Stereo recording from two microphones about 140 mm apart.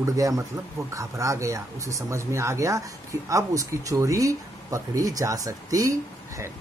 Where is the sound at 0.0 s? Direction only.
25° right (ahead or behind).